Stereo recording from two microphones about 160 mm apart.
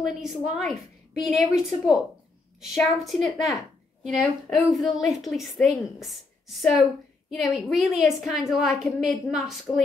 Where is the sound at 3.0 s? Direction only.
Centre (ahead or behind).